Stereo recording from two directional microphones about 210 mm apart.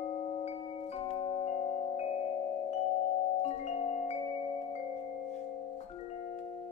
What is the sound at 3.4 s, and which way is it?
Music, 30° left (ahead or behind).